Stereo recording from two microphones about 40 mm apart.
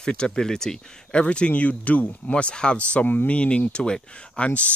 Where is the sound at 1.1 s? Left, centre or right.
Left.